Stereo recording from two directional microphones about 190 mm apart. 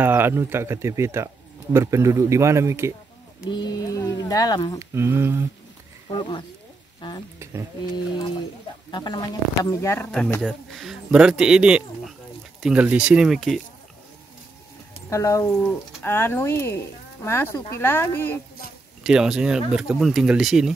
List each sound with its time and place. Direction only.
0.0 s a man's voice: 10° right (ahead or behind)
3.4 s speech: 25° left (ahead or behind)
4.7 s a man's voice: 15° right (ahead or behind)
6.0 s speech: 25° left (ahead or behind)
8.9 s speech: 25° left (ahead or behind); by 13.6 s centre (ahead or behind)
15.0 s speech: 15° left (ahead or behind)
19.0 s speech: 5° right (ahead or behind)